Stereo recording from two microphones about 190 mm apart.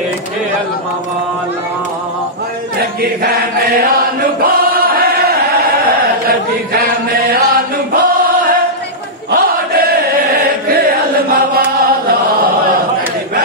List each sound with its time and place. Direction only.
3.0 s choir: 55° right (ahead or behind)
7.9 s chant: 45° right (ahead or behind)